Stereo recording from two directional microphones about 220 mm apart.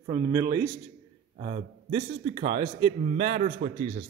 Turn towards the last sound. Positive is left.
turn(degrees=-40)  # may be behind; listen again after turning